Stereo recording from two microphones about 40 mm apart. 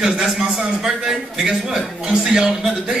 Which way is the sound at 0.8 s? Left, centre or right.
Centre.